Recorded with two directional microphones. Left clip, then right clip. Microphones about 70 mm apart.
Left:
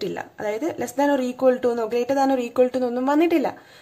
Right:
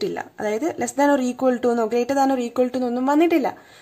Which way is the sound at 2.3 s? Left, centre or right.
Right.